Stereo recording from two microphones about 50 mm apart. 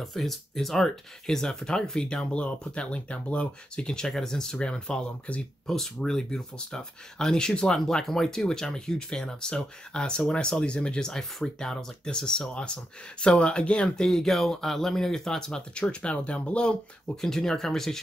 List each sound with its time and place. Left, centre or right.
0.0 s speech: centre
2.3 s speech: left
5.7 s speech: centre; by 16.7 s left
17.2 s speech: centre